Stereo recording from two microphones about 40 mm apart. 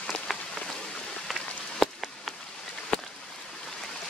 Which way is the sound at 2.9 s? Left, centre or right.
Left.